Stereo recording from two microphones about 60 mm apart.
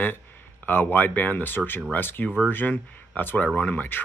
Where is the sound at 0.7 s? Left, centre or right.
Left.